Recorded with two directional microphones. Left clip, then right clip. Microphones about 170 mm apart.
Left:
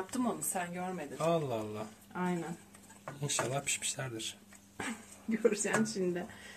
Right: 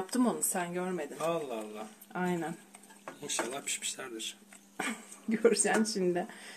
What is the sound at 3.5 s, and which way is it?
Speech, 30° left (ahead or behind).